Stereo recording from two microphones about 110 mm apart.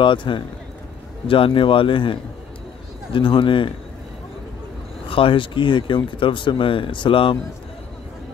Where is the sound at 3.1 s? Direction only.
50° left (ahead or behind).